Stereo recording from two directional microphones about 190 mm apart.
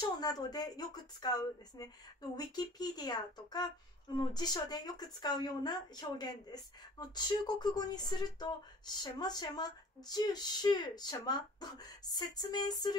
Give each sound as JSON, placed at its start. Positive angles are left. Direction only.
{"t": 0.2, "sound": "speech", "side_deg": 20}